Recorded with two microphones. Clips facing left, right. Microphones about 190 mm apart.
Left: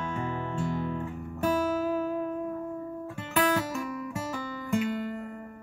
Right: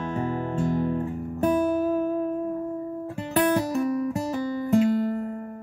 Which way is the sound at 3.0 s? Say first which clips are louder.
Right 4 dB; 40° right (ahead or behind).